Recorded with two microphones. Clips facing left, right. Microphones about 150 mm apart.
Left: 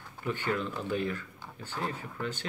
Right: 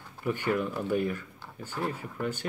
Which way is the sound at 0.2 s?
10° right (ahead or behind).